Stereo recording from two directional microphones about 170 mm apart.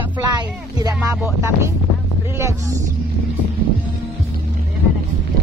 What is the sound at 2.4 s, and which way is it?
Speech, 15° right (ahead or behind).